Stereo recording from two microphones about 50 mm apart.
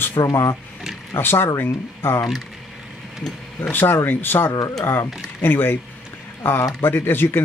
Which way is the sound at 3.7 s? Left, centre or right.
Left.